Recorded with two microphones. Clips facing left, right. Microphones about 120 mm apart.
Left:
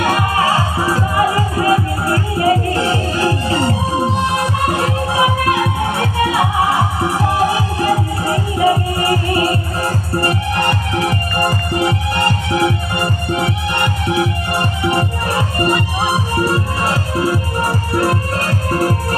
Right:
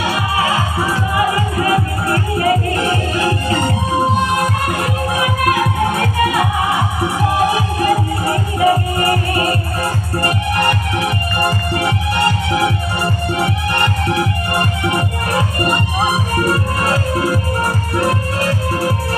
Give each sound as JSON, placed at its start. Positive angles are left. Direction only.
{"t": 0.0, "sound": "music", "side_deg": 45}
{"t": 5.1, "sound": "music", "side_deg": 25}
{"t": 8.5, "sound": "music", "side_deg": 25}
{"t": 18.4, "sound": "music", "side_deg": 45}